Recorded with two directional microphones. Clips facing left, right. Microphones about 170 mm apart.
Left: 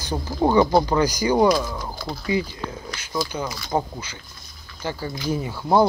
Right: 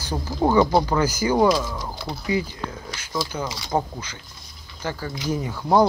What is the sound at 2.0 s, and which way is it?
Speech, 20° right (ahead or behind).